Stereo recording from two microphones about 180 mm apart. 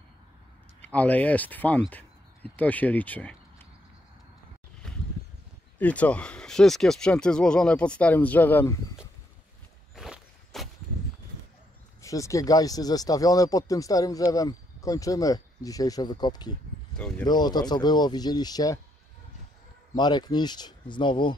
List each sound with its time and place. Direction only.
0.8 s speech: 10° left (ahead or behind)
4.8 s a sound: 5° left (ahead or behind)
5.8 s speech: 10° left (ahead or behind)
9.9 s walk: centre (ahead or behind)
12.0 s speech: 15° left (ahead or behind)
20.0 s speech: 25° left (ahead or behind)